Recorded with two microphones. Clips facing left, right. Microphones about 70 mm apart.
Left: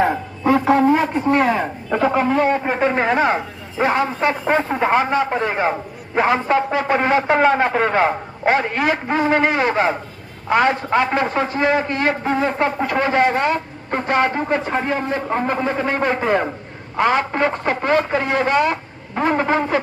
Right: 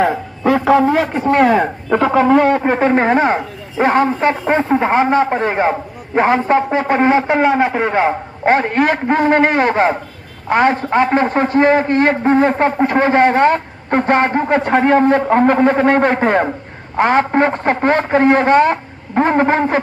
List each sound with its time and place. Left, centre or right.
0.5 s a man's voice: right
1.3 s a man's voice: right
2.9 s a man's voice: right
5.1 s a man's voice: right
7.2 s a sound: centre
8.5 s a man's voice: right
14.5 s a man's voice: right